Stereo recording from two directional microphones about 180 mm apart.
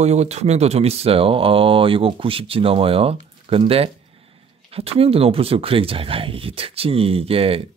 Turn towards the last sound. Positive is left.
turn(degrees=-30)  # may be behind; listen again after turning